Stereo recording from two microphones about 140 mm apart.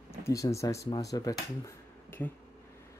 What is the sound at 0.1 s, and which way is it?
Speech, 20° left (ahead or behind).